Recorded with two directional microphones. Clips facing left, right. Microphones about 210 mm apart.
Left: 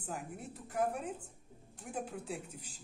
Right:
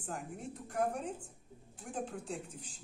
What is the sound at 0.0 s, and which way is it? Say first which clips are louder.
Speech: right 1 dB; 5° left (ahead or behind).